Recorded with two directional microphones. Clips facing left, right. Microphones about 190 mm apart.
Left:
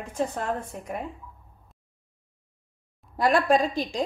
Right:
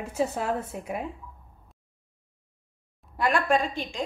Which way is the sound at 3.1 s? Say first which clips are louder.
Left 3 dB; 35° left (ahead or behind).